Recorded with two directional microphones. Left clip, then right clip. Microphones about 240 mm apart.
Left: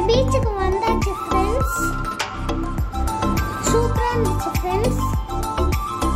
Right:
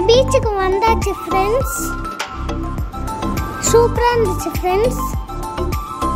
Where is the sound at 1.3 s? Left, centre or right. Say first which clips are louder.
Right 4 dB; centre.